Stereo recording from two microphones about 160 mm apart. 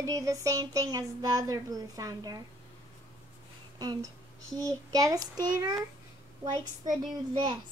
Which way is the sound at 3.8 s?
25° right (ahead or behind).